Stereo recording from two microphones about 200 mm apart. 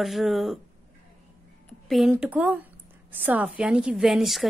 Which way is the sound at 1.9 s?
5° right (ahead or behind).